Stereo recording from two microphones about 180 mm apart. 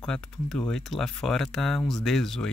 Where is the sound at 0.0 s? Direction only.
5° left (ahead or behind).